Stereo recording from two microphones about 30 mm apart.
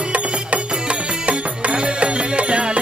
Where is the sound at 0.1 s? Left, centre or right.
Right.